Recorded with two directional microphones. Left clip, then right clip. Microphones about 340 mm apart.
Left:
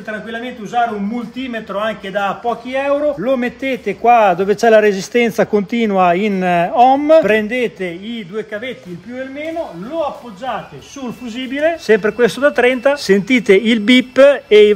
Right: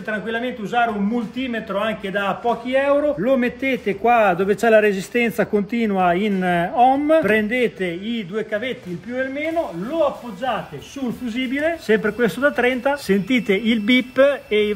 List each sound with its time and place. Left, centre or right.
0.3 s a man's voice: centre
11.0 s speech: centre